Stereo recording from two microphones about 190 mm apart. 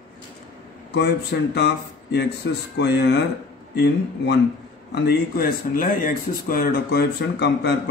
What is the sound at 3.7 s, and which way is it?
A man's voice, 60° left (ahead or behind).